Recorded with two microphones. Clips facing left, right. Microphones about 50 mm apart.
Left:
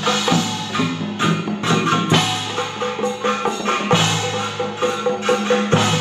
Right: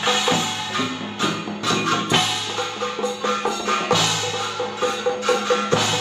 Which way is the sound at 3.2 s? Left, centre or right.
Left.